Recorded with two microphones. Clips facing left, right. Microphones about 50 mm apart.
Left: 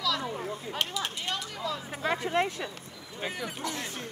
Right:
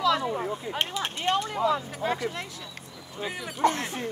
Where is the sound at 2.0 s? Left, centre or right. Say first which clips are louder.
Right 1 dB; left.